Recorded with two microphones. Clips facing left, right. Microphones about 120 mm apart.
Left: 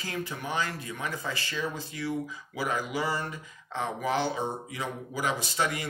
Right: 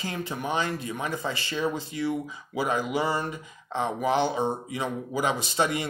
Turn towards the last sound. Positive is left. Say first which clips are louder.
# right 4 dB
turn(degrees=-20)  # may be behind; listen again after turning